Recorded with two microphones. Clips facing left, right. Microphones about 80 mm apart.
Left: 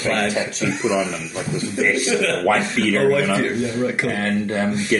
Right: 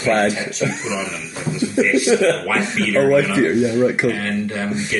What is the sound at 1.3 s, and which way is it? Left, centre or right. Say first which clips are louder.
Speech: right 2 dB; left.